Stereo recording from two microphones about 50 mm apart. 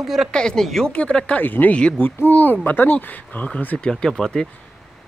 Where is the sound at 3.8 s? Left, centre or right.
Centre.